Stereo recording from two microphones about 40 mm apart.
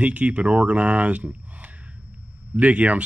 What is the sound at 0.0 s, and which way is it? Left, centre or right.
Speech, right.